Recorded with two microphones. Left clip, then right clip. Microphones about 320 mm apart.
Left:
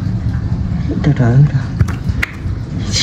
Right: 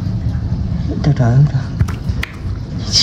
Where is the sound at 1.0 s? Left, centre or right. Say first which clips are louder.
Left 2 dB; centre.